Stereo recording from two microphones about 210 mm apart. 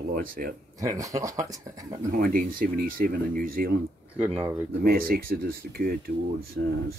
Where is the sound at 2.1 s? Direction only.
45° right (ahead or behind).